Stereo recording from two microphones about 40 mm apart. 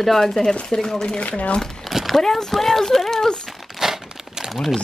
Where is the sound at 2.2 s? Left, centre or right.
Centre.